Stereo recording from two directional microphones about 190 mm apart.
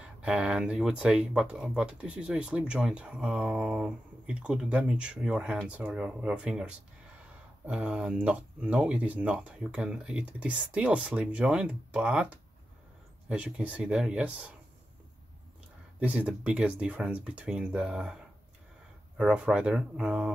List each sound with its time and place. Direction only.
0.0 s speech: 5° right (ahead or behind)
16.0 s speech: 5° right (ahead or behind)